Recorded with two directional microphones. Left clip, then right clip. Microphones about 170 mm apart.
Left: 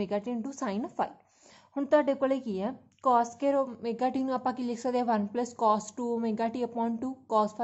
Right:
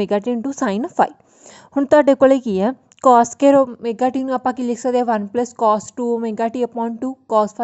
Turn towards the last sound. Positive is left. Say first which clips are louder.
# right 10 dB
turn(degrees=-40)  # may be behind; listen again after turning